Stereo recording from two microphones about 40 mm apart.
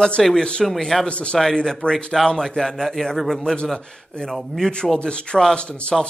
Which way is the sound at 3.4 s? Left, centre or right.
Left.